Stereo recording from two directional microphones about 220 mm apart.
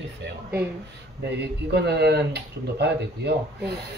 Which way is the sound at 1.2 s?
50° right (ahead or behind).